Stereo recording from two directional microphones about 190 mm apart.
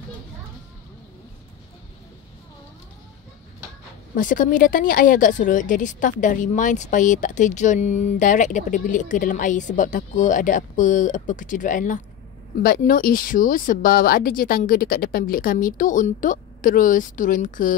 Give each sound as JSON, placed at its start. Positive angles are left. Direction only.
{"t": 4.1, "sound": "a woman's voice", "side_deg": 45}